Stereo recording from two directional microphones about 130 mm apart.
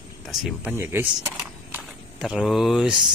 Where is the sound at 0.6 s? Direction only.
15° right (ahead or behind).